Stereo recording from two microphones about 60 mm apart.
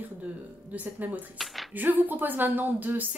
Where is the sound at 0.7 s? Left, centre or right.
Right.